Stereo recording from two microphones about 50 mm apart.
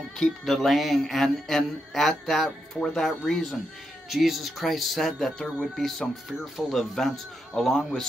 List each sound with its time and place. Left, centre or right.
0.5 s a man's voice: centre
4.1 s a man's voice: centre